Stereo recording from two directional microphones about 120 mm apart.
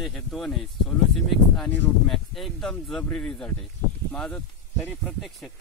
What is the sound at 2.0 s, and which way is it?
Speech, centre (ahead or behind).